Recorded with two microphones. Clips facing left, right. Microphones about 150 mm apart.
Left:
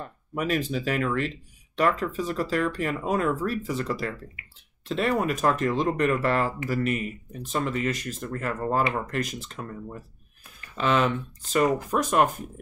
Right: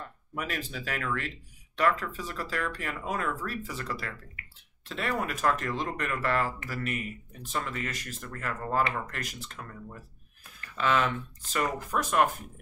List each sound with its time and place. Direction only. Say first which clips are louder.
0.4 s speech: left 9 dB; 20° left (ahead or behind)
10.6 s a sound: left 3 dB; 20° left (ahead or behind)
11.5 s speech: left 7 dB; 20° left (ahead or behind)